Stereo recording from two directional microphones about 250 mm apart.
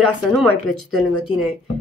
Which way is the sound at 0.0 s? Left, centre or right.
Centre.